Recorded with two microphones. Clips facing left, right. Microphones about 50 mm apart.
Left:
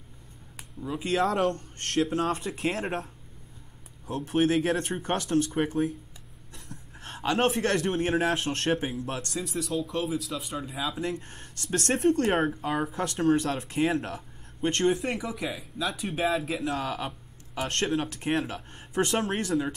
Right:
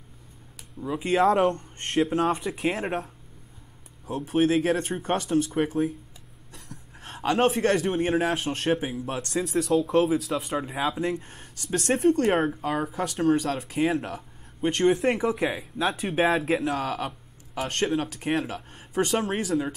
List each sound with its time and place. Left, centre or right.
0.7 s speech: centre
4.1 s speech: centre
7.0 s a sound: centre
7.3 s speech: centre
9.4 s speech: right
10.0 s speech: right
10.4 s speech: right
11.0 s speech: centre
15.0 s speech: right
16.2 s speech: right
16.8 s speech: centre